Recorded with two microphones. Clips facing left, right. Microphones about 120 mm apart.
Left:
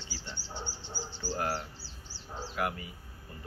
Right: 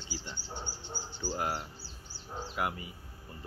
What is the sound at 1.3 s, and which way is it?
Speech, 15° right (ahead or behind).